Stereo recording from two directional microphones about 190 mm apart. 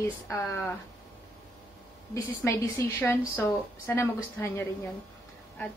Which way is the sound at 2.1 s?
15° left (ahead or behind).